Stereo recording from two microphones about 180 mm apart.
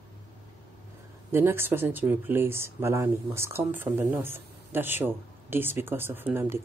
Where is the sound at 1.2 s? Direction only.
15° right (ahead or behind).